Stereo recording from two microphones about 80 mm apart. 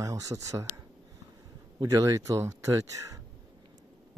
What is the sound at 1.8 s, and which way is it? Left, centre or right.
Speech, right.